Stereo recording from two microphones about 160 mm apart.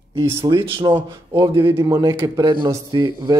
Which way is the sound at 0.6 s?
30° right (ahead or behind).